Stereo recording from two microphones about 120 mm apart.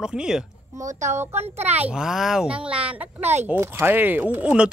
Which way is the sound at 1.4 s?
60° right (ahead or behind).